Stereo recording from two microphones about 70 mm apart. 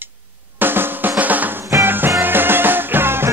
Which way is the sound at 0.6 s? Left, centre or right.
Right.